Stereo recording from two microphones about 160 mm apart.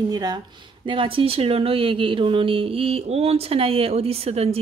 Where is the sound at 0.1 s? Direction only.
25° right (ahead or behind).